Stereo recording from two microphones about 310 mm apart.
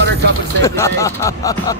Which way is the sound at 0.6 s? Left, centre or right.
Centre.